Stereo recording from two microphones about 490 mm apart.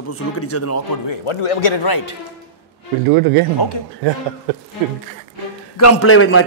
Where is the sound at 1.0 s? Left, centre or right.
Left.